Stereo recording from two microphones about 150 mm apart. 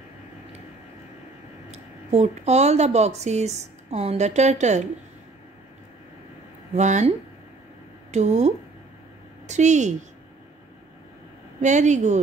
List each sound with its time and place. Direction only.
1.7 s speech: 45° right (ahead or behind)
6.7 s speech: 50° right (ahead or behind)
8.1 s a woman's voice: 50° right (ahead or behind)
11.6 s speech: 55° right (ahead or behind)